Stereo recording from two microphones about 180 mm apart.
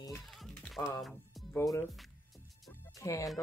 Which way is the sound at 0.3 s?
Centre (ahead or behind).